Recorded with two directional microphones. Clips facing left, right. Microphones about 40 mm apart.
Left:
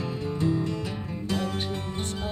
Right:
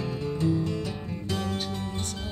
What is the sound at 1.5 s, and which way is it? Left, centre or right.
Music, centre.